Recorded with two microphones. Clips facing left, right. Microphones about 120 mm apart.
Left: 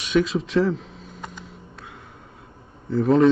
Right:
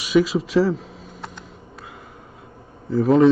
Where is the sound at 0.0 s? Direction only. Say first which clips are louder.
Right 3 dB; 5° right (ahead or behind).